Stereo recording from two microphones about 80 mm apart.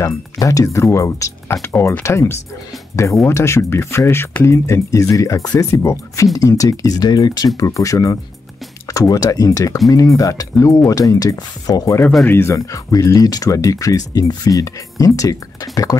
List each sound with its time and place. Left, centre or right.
0.0 s speech: left
7.5 s speech: left
12.3 s speech: left
12.5 s speech: left